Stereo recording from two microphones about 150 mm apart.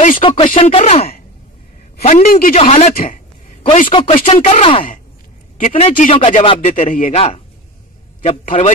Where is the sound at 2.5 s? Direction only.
45° left (ahead or behind).